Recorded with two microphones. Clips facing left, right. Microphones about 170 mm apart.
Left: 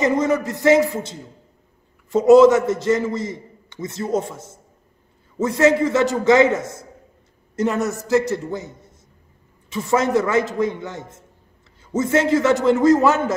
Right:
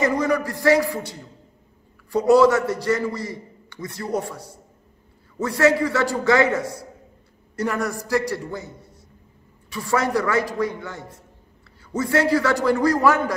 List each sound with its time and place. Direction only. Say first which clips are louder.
0.0 s a man's voice: left 2 dB; 20° left (ahead or behind)